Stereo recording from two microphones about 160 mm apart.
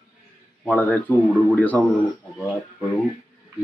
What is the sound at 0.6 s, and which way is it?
Speech, 10° left (ahead or behind).